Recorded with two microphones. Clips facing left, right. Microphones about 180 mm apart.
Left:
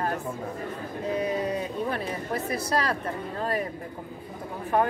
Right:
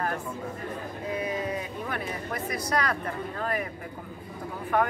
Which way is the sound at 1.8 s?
30° left (ahead or behind).